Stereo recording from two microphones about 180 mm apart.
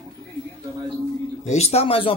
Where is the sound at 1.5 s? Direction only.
35° left (ahead or behind).